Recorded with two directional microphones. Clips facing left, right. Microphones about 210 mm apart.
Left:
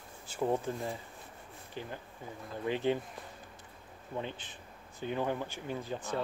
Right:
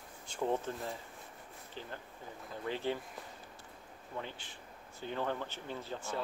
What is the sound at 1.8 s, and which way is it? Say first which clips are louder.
Speech: left 4 dB; 15° left (ahead or behind).